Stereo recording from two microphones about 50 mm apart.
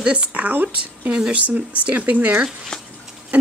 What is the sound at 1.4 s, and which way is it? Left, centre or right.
Speech, right.